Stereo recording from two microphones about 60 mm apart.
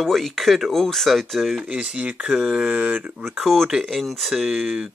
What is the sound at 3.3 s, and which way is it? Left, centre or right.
Speech, centre.